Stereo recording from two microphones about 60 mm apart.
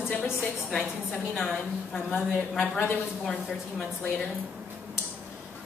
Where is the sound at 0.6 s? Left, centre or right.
Centre.